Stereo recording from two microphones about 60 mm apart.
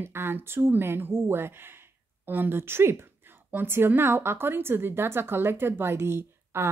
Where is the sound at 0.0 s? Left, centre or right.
Right.